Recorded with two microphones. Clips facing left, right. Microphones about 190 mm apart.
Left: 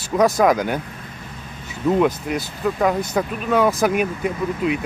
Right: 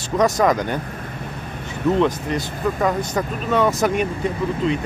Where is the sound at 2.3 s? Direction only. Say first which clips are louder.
Even; 5° left (ahead or behind).